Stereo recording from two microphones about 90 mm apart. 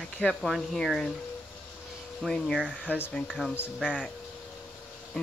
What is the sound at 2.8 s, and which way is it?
Speech, 25° left (ahead or behind).